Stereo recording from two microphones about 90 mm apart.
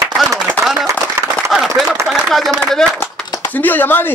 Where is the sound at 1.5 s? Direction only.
Centre (ahead or behind).